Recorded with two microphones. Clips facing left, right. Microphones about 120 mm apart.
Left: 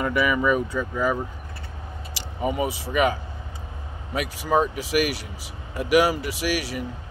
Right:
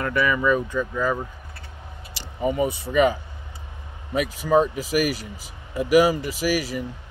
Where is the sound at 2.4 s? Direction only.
10° left (ahead or behind).